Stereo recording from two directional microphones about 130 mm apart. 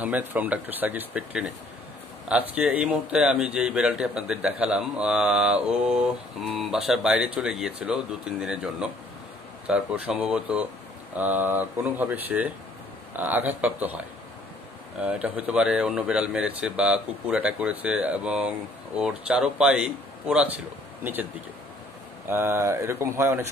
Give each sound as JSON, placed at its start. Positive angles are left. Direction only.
{"t": 0.0, "sound": "speech", "side_deg": -10}
{"t": 22.3, "sound": "speech", "side_deg": -20}